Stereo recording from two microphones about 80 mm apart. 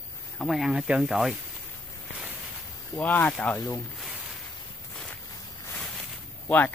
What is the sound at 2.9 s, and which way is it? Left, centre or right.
Speech, left.